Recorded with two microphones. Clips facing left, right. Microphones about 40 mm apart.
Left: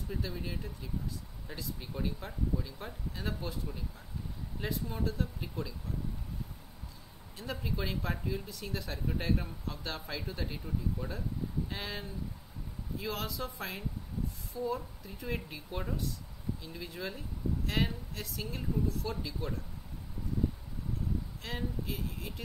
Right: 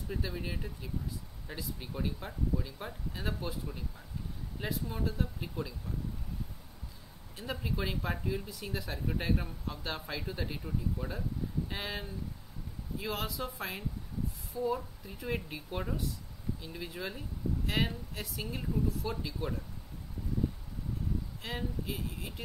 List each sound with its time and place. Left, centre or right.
0.1 s speech: centre
7.3 s speech: centre
21.4 s speech: centre